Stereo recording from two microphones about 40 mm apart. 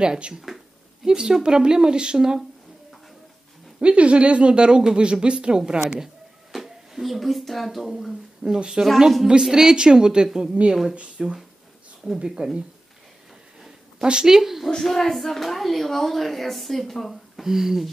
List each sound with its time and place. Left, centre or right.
0.0 s speech: right
0.3 s speech: centre
1.0 s speech: centre
3.8 s speech: right
6.5 s speech: centre
8.5 s a woman's voice: centre
13.6 s a sound: centre
14.7 s speech: centre